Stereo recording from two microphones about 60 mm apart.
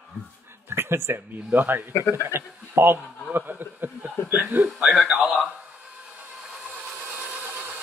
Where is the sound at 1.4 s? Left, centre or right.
Right.